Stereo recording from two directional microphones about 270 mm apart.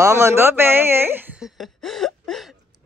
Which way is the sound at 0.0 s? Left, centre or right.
Centre.